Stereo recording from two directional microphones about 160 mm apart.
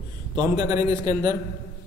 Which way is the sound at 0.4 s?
20° right (ahead or behind).